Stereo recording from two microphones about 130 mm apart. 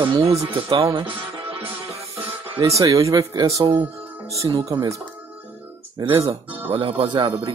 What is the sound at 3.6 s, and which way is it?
Speech, 40° right (ahead or behind).